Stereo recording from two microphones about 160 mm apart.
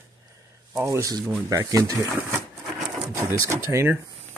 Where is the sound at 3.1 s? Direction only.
20° right (ahead or behind).